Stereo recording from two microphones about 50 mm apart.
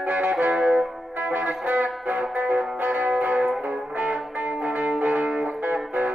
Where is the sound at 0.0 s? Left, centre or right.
Right.